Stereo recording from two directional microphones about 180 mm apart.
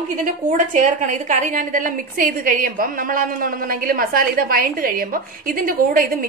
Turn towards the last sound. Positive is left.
turn(degrees=-50)  # may be behind; listen again after turning